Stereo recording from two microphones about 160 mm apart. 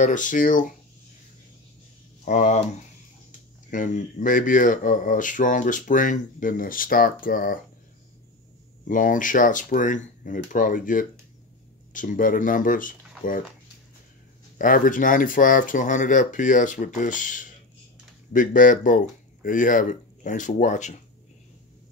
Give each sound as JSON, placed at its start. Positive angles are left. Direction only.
{"t": 0.0, "sound": "speech", "side_deg": 55}
{"t": 2.2, "sound": "speech", "side_deg": 50}
{"t": 8.8, "sound": "speech", "side_deg": 55}
{"t": 14.6, "sound": "speech", "side_deg": 55}